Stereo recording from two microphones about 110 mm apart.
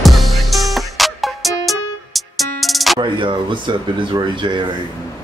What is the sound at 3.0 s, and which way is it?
Speech, 45° right (ahead or behind).